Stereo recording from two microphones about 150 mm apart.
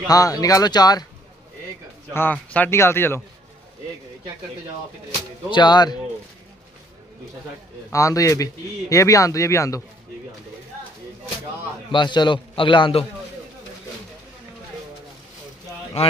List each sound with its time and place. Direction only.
0.1 s speech: 25° left (ahead or behind)
2.1 s a man's voice: 10° left (ahead or behind)
5.5 s speech: 30° left (ahead or behind)
7.9 s speech: 20° left (ahead or behind)
11.9 s a man's voice: 30° left (ahead or behind)